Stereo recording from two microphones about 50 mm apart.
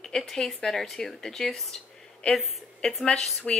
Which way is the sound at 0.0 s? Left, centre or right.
Centre.